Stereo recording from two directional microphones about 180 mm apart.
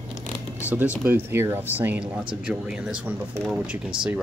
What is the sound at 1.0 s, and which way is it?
Speech, 10° right (ahead or behind).